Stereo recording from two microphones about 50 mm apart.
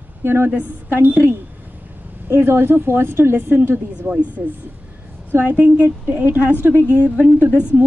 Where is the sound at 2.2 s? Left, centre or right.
Right.